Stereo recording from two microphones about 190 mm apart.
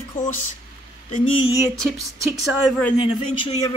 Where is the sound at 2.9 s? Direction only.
30° left (ahead or behind).